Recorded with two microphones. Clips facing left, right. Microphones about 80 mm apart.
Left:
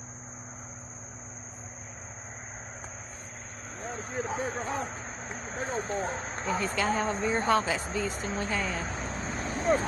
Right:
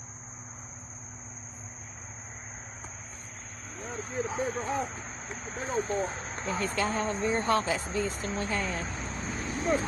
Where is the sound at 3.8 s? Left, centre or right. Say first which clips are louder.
Right 1 dB; left.